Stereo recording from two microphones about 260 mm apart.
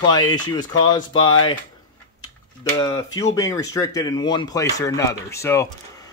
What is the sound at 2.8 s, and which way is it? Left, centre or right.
Speech, centre.